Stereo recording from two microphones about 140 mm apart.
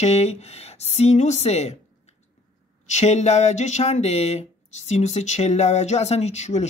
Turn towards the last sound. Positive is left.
turn(degrees=55)  # may be behind; listen again after turning